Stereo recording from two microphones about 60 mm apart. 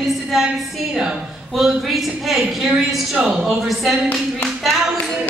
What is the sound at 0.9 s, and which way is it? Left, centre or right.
A woman's voice, centre.